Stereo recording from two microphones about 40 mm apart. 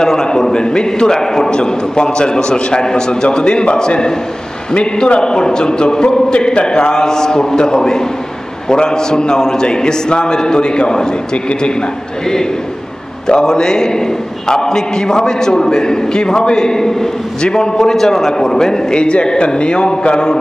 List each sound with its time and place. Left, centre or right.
0.0 s a man's voice: centre
13.3 s a man's voice: centre